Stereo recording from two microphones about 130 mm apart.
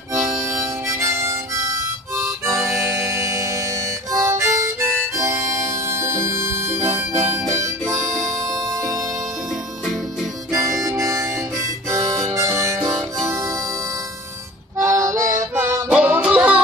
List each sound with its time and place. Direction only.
0.1 s harmonica: 25° right (ahead or behind)
5.7 s music: 20° right (ahead or behind)
7.2 s harmonica: 20° right (ahead or behind)
10.5 s harmonica: 25° right (ahead or behind)
14.8 s music: 20° right (ahead or behind)